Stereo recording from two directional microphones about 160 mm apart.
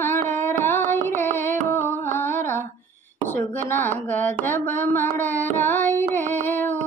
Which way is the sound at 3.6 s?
10° left (ahead or behind).